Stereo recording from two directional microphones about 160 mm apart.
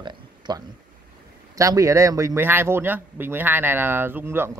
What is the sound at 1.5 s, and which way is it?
Speech, 20° right (ahead or behind).